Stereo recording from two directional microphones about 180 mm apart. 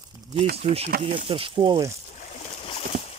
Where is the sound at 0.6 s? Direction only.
35° right (ahead or behind).